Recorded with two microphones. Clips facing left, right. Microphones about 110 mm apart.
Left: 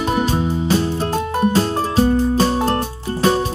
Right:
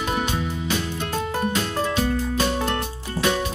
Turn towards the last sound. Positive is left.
turn(degrees=35)  # may be behind; listen again after turning